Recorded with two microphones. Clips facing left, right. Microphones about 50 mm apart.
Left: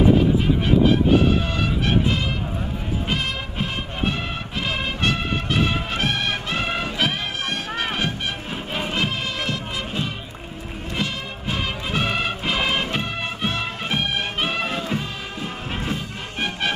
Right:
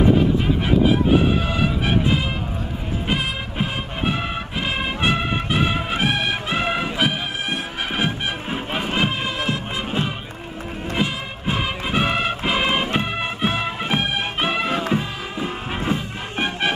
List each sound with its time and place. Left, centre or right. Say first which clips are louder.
0.7 s music: even; centre